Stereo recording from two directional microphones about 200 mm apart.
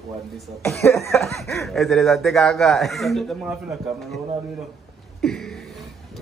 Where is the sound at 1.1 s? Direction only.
Centre (ahead or behind).